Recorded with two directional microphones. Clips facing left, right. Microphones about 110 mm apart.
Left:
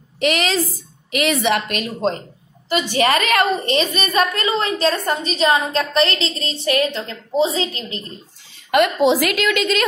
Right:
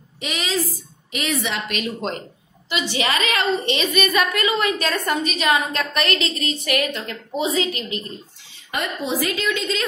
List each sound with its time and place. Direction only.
0.2 s a woman's voice: 65° left (ahead or behind)
1.7 s a woman's voice: 35° left (ahead or behind)
2.9 s a woman's voice: 45° left (ahead or behind); by 8.0 s 30° left (ahead or behind)
8.7 s a woman's voice: 90° left; by 9.8 s 70° left (ahead or behind)